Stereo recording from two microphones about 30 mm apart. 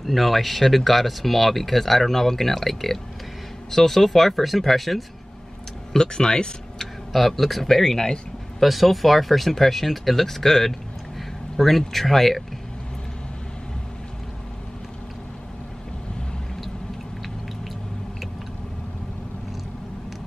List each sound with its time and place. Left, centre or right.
0.0 s speech: centre
5.9 s speech: left
7.1 s speech: centre
8.5 s speech: centre